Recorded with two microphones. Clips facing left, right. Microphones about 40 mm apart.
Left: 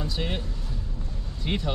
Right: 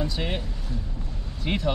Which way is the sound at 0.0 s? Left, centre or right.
Centre.